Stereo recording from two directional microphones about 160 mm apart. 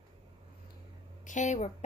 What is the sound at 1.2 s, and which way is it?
Speech, 50° left (ahead or behind).